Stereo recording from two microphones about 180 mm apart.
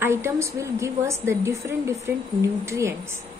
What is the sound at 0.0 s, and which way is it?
A woman's voice, 15° right (ahead or behind).